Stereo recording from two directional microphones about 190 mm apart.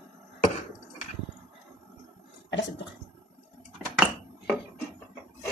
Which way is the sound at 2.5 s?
70° left (ahead or behind).